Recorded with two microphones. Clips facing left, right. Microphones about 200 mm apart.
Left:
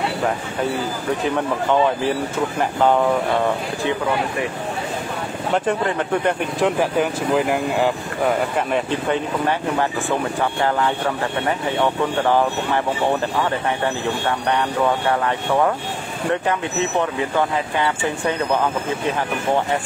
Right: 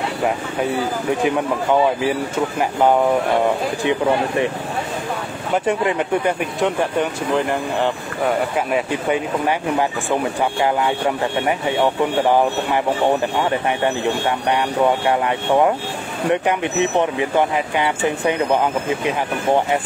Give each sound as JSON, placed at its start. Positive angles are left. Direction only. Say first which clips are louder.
{"t": 1.7, "sound": "speech", "louder": "right 1 dB", "side_deg": -10}
{"t": 5.7, "sound": "speech", "louder": "right 4 dB", "side_deg": -10}
{"t": 6.6, "sound": "speech", "louder": "left 1 dB", "side_deg": 0}
{"t": 15.0, "sound": "speech", "louder": "right 2 dB", "side_deg": -15}